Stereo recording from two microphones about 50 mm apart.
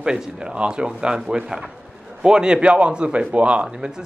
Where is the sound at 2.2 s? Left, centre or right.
Centre.